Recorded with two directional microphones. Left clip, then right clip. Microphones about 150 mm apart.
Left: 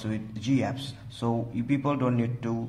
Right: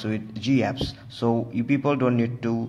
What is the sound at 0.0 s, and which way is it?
A man's voice, 20° right (ahead or behind).